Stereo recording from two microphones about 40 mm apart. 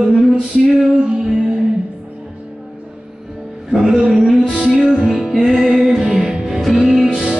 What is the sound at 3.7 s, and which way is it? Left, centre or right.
Music, centre.